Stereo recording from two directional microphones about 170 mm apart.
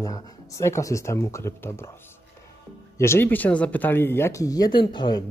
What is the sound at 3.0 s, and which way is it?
Speech, 15° left (ahead or behind).